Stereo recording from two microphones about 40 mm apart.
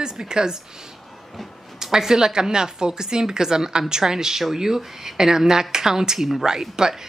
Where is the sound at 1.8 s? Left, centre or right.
Centre.